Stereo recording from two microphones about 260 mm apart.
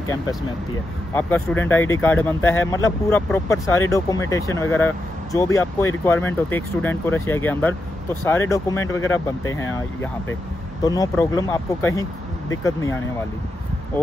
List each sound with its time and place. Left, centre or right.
1.1 s speech: centre
10.8 s speech: centre